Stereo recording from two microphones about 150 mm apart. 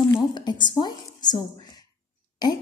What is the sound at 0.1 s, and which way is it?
A woman's voice, 30° left (ahead or behind).